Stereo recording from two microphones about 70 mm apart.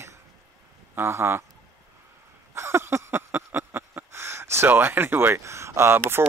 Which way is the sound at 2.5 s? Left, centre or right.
Right.